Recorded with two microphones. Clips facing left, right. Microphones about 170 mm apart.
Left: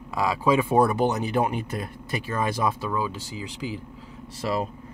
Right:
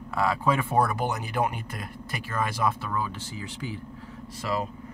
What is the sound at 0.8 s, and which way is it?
Speech, 25° left (ahead or behind).